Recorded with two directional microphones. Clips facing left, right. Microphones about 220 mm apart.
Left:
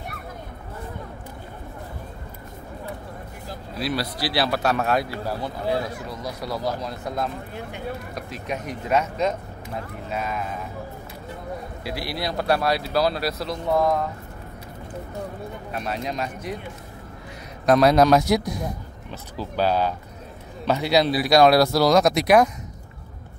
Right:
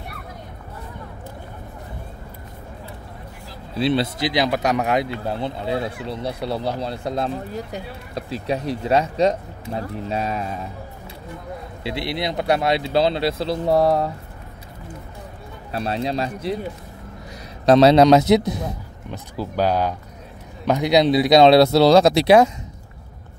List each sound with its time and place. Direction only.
3.7 s speech: 25° right (ahead or behind)
11.8 s speech: 25° right (ahead or behind)
15.7 s speech: 30° right (ahead or behind)
17.6 s speech: 25° right (ahead or behind)